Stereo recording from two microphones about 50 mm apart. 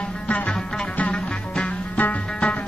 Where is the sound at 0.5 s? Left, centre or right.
Centre.